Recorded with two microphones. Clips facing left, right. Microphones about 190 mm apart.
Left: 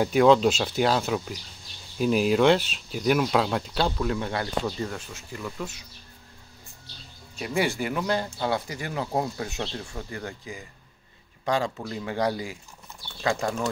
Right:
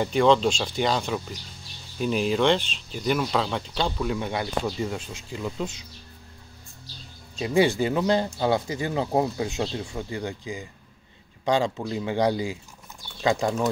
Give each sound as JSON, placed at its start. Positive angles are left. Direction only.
{"t": 0.0, "sound": "speech", "side_deg": 5}
{"t": 4.1, "sound": "speech", "side_deg": -15}
{"t": 7.3, "sound": "speech", "side_deg": -20}